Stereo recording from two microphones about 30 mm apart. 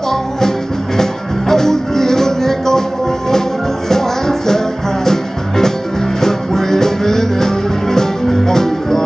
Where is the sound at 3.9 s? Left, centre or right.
Centre.